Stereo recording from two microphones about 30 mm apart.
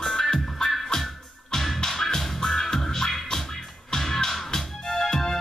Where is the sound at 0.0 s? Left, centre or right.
Centre.